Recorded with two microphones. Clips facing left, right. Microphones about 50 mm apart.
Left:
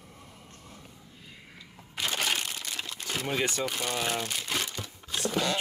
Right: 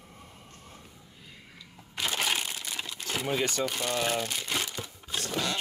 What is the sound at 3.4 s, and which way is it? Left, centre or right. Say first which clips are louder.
Crumpling: right 1 dB; centre.